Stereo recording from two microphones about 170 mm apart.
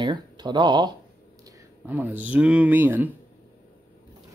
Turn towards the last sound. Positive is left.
turn(degrees=-10)  # may be behind; listen again after turning